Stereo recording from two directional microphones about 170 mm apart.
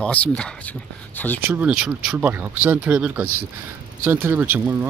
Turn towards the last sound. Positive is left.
turn(degrees=-10)  # may be behind; listen again after turning